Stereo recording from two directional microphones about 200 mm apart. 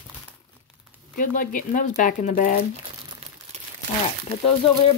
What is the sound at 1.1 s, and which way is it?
Speech, 45° left (ahead or behind).